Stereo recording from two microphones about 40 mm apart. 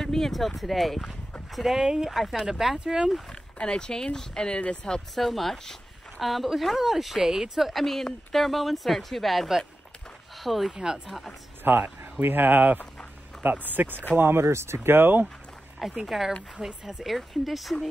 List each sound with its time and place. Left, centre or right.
0.0 s speech: centre
2.8 s speech: right
3.3 s speech: left
5.1 s speech: centre
7.7 s speech: centre
11.6 s speech: right
14.1 s speech: right
16.1 s speech: centre
17.0 s speech: centre